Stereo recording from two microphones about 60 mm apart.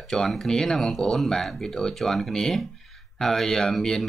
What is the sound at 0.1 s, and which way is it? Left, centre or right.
Speech, centre.